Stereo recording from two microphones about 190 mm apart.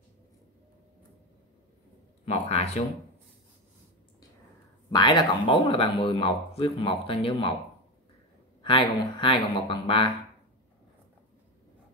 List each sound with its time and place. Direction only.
2.2 s speech: 35° left (ahead or behind)
4.9 s speech: 25° left (ahead or behind)
8.6 s speech: 25° left (ahead or behind)